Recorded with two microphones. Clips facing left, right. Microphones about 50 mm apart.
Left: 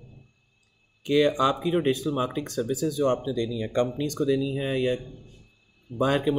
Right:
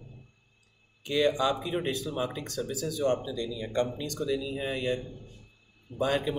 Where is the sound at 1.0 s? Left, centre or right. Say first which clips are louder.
Left 4 dB; left.